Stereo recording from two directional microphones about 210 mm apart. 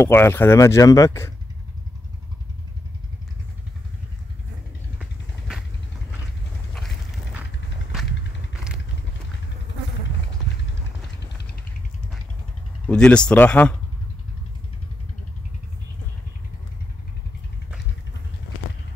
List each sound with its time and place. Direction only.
0.0 s speech: 10° left (ahead or behind)
7.9 s vehicle: centre (ahead or behind)
11.1 s a sound: 50° left (ahead or behind)
12.8 s speech: 5° left (ahead or behind)